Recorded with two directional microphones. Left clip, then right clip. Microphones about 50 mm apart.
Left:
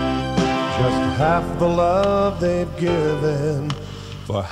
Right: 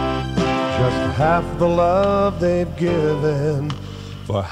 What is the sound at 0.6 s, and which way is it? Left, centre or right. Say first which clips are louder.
Music: right 1 dB; centre.